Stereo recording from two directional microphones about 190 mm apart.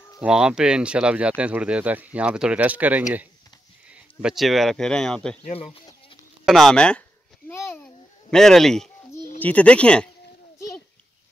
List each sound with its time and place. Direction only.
0.2 s speech: 5° right (ahead or behind)
5.4 s speech: 30° left (ahead or behind)
6.4 s speech: centre (ahead or behind)
7.4 s a sound: 10° left (ahead or behind)
9.4 s speech: 5° left (ahead or behind)